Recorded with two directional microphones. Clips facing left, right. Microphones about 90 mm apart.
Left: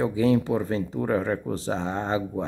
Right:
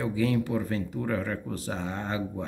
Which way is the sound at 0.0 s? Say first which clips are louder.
Left 5 dB; 25° left (ahead or behind).